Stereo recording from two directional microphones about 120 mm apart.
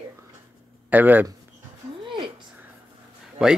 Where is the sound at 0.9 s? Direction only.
15° right (ahead or behind).